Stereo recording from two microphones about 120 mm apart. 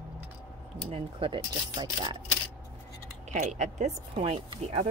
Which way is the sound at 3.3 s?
70° right (ahead or behind).